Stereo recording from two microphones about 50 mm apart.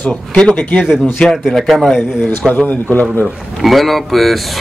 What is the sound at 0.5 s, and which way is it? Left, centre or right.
Speech, left.